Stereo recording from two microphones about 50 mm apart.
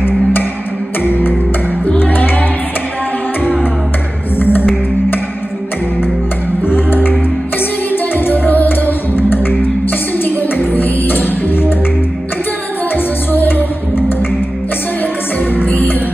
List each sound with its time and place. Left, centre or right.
0.0 s music: left
2.0 s music: left
4.4 s music: left
6.9 s music: left
12.9 s music: left
15.5 s music: left